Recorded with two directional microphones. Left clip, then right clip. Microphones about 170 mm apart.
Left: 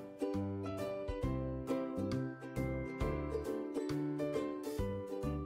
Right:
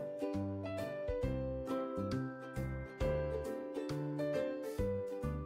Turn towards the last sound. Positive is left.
turn(degrees=0)  # may be behind; listen again after turning